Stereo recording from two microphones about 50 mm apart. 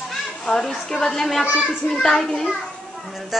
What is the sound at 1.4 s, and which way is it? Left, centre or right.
Speech, right.